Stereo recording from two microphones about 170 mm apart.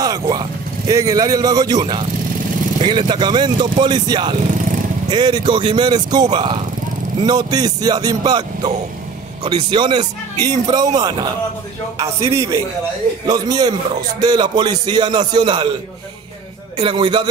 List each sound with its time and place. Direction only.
0.0 s a man's voice: 20° right (ahead or behind)
16.7 s a man's voice: 30° right (ahead or behind)